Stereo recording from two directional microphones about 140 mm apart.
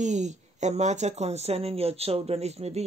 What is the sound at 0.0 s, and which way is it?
Speech, 55° right (ahead or behind).